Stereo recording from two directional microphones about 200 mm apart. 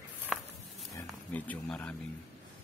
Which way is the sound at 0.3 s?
Centre (ahead or behind).